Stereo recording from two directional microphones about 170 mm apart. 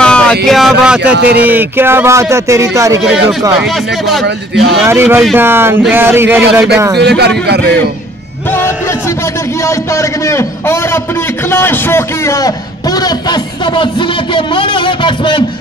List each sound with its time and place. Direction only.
0.0 s a sound: 5° left (ahead or behind)
0.5 s speech: centre (ahead or behind)
1.1 s a man's voice: 70° right (ahead or behind)
1.4 s music: 10° right (ahead or behind)
4.8 s music: 15° right (ahead or behind)
7.0 s a man's voice: 80° right
9.7 s a man's voice: 15° left (ahead or behind)